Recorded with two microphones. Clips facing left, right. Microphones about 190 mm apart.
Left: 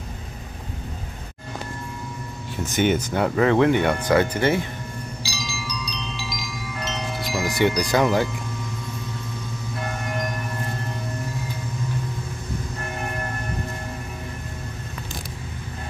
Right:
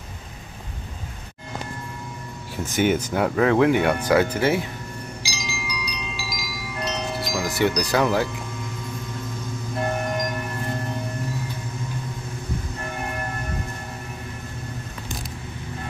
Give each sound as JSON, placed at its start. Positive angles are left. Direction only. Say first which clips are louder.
{"t": 2.7, "sound": "speech", "louder": "even", "side_deg": -5}
{"t": 5.2, "sound": "wind chime", "louder": "left 1 dB", "side_deg": -15}
{"t": 7.4, "sound": "speech", "louder": "left 2 dB", "side_deg": -5}